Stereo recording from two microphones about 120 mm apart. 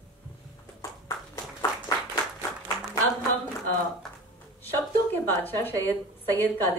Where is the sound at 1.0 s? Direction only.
25° left (ahead or behind).